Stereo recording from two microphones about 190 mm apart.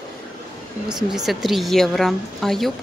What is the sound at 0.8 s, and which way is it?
A woman's voice, 5° right (ahead or behind).